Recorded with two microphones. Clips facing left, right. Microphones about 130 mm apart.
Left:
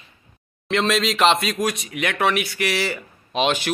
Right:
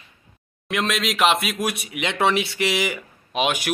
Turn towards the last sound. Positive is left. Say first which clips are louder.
# left 2 dB
turn(degrees=-10)  # may be behind; listen again after turning